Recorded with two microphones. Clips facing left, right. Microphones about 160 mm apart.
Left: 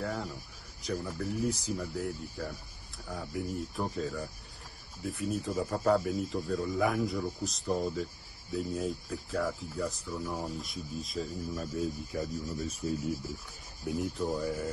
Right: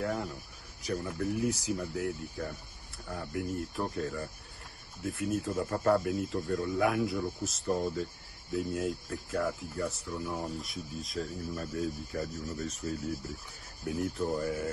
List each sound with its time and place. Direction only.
0.0 s speech: centre (ahead or behind)
12.5 s speech: 15° left (ahead or behind)
13.8 s speech: centre (ahead or behind)